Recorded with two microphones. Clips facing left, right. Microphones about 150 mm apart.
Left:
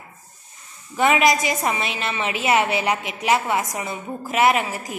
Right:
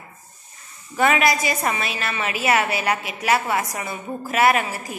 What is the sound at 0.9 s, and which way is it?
A woman's voice, 15° left (ahead or behind).